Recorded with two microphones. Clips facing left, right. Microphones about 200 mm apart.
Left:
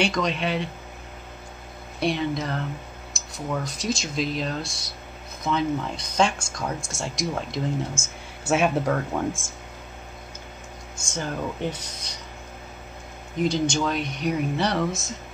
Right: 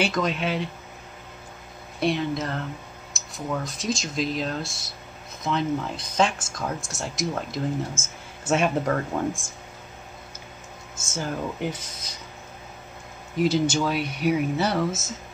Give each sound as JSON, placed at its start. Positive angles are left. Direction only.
{"t": 0.0, "sound": "speech", "side_deg": -5}
{"t": 2.0, "sound": "speech", "side_deg": 0}
{"t": 11.0, "sound": "speech", "side_deg": -5}
{"t": 13.4, "sound": "speech", "side_deg": -5}